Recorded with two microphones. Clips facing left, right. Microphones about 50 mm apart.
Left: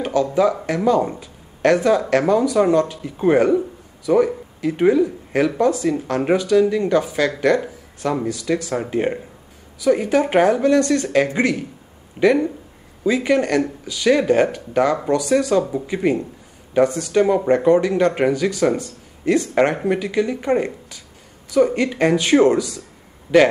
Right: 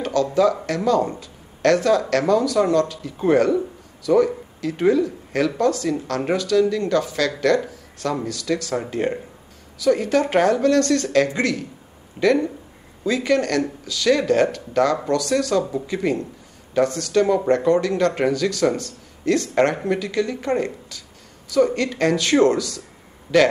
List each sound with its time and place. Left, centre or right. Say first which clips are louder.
0.0 s speech: left 1 dB; centre